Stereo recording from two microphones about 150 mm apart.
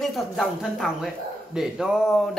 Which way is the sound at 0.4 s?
Centre (ahead or behind).